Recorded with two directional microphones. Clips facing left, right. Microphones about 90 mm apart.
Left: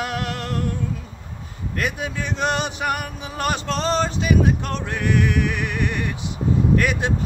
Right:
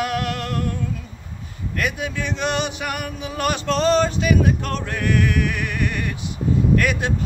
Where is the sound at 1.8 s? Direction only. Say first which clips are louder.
Right 1 dB; 30° left (ahead or behind).